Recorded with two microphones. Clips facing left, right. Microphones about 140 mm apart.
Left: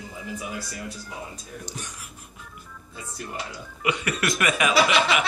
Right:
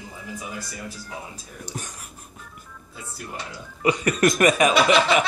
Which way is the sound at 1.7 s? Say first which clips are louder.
Right 2 dB; 45° right (ahead or behind).